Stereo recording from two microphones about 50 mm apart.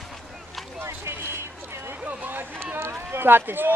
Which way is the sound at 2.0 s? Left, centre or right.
Right.